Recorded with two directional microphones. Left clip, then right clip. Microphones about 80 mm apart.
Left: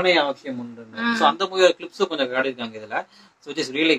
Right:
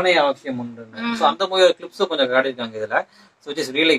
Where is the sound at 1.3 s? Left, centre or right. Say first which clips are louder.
Right 2 dB; right.